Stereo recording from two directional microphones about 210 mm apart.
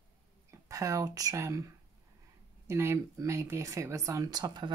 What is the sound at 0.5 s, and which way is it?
Speech, 15° right (ahead or behind).